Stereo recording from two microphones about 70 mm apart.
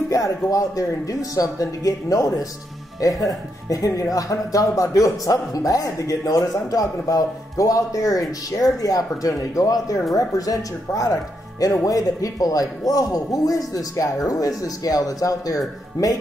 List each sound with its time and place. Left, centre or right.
0.1 s speech: left